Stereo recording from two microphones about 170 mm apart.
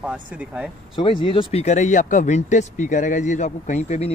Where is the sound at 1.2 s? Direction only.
30° left (ahead or behind).